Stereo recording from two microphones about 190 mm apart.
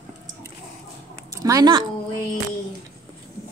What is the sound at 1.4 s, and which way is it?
Speech, 20° right (ahead or behind).